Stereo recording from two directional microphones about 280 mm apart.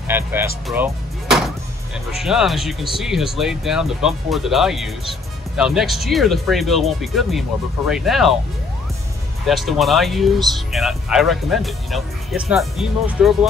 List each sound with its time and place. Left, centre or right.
0.1 s speech: centre
0.7 s music: centre
2.1 s speech: centre
9.5 s speech: centre